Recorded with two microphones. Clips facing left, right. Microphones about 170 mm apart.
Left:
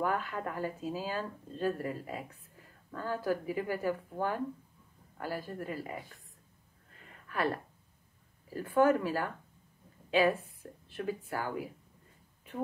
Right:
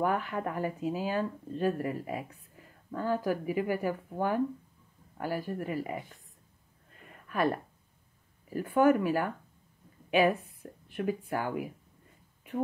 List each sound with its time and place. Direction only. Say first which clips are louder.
0.0 s speech: right 3 dB; 20° right (ahead or behind)
7.2 s speech: right 4 dB; 15° right (ahead or behind)
8.5 s speech: right 2 dB; 15° right (ahead or behind)
10.9 s speech: right 4 dB; 20° right (ahead or behind)